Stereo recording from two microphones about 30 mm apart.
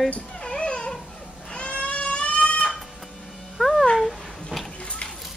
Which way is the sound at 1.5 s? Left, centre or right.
Left.